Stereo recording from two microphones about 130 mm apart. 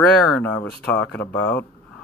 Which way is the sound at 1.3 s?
10° left (ahead or behind).